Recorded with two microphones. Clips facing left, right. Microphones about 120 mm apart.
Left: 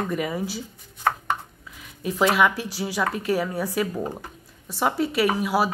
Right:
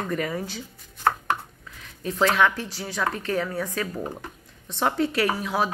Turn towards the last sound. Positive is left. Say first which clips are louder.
# left 3 dB
turn(degrees=10)  # may be behind; listen again after turning